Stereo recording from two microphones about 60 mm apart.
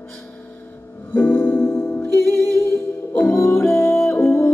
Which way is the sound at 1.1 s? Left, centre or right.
Left.